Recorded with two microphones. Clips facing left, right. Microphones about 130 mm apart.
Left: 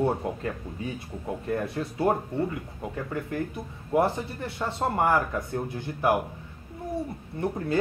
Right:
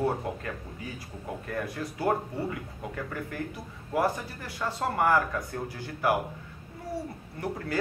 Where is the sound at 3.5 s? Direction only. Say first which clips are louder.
Left 7 dB; 25° left (ahead or behind).